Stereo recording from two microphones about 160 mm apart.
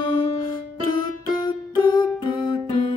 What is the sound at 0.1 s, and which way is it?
Music, 25° left (ahead or behind).